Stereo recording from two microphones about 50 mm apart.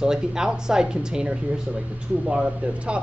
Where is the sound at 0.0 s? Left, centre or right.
Centre.